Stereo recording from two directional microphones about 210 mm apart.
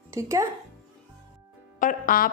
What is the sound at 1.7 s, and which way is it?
Music, 40° left (ahead or behind).